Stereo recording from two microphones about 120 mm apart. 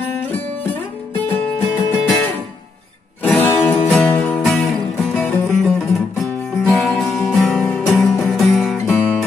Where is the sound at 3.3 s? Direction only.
20° left (ahead or behind).